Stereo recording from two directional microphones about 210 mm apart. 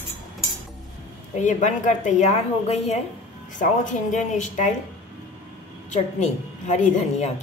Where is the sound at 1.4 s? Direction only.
35° left (ahead or behind).